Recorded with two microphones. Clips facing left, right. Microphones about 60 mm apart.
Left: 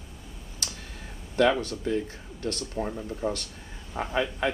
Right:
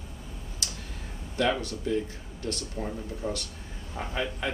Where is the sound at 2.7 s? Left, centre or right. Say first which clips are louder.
Left 3 dB; left.